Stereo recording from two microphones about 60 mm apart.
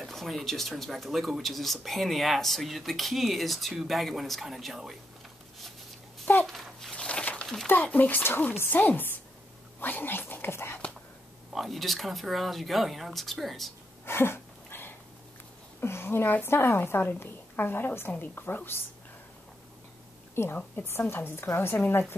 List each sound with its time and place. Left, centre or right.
0.0 s speech: centre
6.4 s a sound: centre
7.6 s speech: left
11.5 s speech: centre
14.0 s a sound: left
15.8 s a woman's voice: left
20.4 s a woman's voice: left